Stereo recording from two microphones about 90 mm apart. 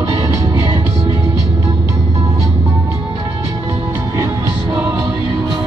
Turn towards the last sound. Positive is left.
turn(degrees=-25)  # may be behind; listen again after turning